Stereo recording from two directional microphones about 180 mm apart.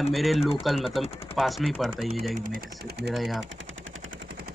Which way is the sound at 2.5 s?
65° right (ahead or behind).